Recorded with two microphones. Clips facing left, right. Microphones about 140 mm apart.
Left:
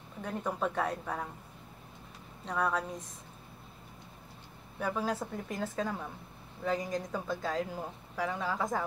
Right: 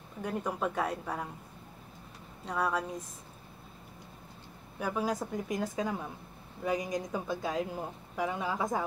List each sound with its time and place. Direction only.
0.2 s speech: 10° right (ahead or behind)
2.4 s speech: 10° right (ahead or behind)
4.7 s speech: 10° right (ahead or behind)